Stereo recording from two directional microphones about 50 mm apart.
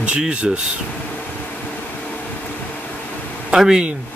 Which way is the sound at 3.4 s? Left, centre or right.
Centre.